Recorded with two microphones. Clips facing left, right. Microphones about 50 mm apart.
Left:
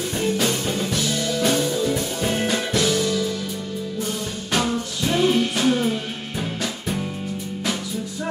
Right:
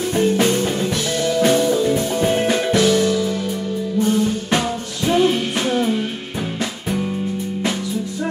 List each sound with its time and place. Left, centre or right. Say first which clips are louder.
0.1 s music: right 6 dB; right
5.0 s music: right 3 dB; right